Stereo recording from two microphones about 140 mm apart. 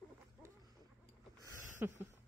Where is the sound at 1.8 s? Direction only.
15° right (ahead or behind).